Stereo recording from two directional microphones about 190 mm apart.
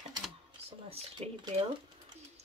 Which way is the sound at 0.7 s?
30° right (ahead or behind).